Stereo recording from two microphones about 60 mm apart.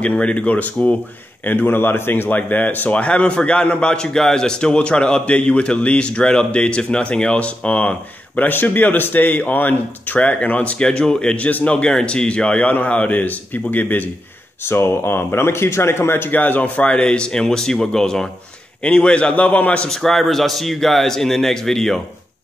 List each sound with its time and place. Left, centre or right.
0.0 s speech: left
8.4 s speech: left
14.6 s speech: left
19.9 s a man's voice: centre